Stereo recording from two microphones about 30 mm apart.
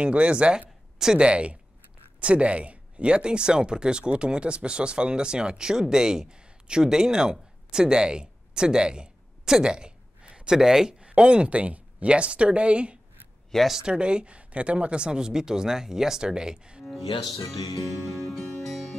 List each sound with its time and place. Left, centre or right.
0.0 s speech: right; by 10.9 s centre
11.1 s speech: right
13.5 s speech: centre
13.8 s speech: right
17.5 s music: centre